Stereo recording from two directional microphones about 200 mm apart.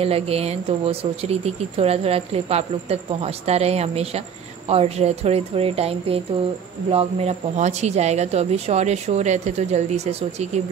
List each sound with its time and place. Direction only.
0.0 s speech: 30° right (ahead or behind)